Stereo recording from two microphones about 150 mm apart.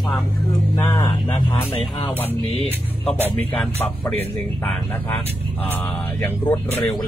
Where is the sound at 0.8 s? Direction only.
15° left (ahead or behind).